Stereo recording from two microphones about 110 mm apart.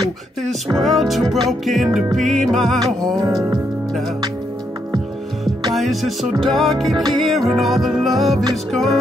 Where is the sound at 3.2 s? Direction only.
30° right (ahead or behind).